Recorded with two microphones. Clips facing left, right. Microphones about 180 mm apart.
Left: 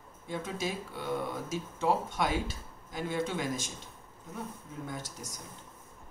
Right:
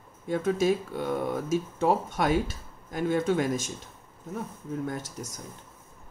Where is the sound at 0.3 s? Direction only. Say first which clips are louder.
Right 11 dB; 50° right (ahead or behind).